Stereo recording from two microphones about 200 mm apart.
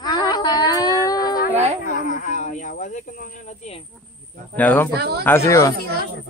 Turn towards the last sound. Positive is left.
turn(degrees=15)  # may be behind; listen again after turning